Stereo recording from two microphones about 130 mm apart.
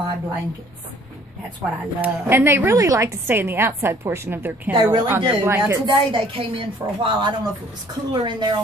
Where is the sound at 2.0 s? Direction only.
20° right (ahead or behind).